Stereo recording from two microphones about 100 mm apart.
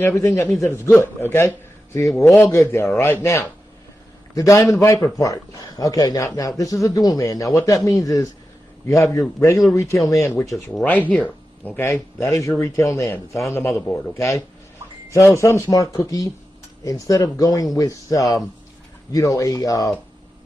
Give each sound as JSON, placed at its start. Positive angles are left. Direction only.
{"t": 0.1, "sound": "a man's voice", "side_deg": 30}
{"t": 10.5, "sound": "speech", "side_deg": 5}
{"t": 13.7, "sound": "speech", "side_deg": 15}
{"t": 14.1, "sound": "a man's voice", "side_deg": 30}